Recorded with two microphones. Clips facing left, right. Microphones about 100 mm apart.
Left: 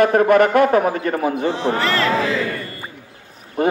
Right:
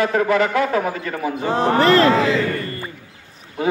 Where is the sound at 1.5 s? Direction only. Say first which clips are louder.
Right 9 dB; 45° right (ahead or behind).